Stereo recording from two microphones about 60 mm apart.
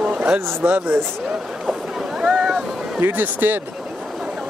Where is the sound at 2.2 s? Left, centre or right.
Centre.